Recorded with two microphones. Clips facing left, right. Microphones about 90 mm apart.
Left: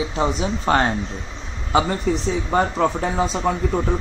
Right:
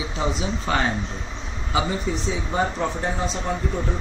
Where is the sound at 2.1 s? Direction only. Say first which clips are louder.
Left 5 dB; 60° left (ahead or behind).